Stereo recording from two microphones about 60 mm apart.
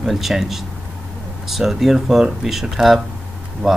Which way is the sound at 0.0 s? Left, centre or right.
Centre.